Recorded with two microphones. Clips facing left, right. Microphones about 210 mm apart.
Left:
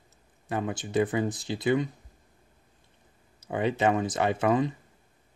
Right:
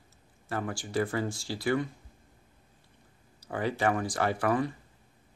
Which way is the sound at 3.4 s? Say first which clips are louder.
Left 3 dB; 20° left (ahead or behind).